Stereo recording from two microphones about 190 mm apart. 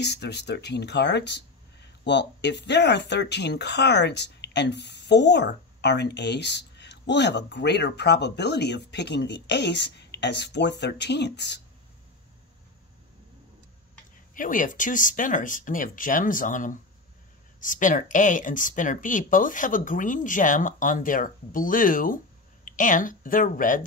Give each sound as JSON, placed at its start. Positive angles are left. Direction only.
{"t": 0.0, "sound": "speech", "side_deg": 60}
{"t": 14.3, "sound": "speech", "side_deg": 45}